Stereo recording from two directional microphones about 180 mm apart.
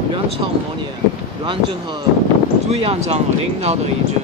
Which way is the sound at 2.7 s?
35° right (ahead or behind).